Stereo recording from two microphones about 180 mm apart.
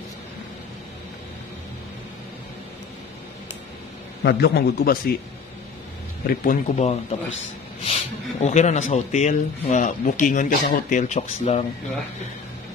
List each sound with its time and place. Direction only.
4.2 s a man's voice: 65° left (ahead or behind)
6.2 s a man's voice: 50° left (ahead or behind)